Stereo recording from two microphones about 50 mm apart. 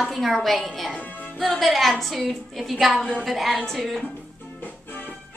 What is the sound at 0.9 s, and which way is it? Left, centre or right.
Speech, left.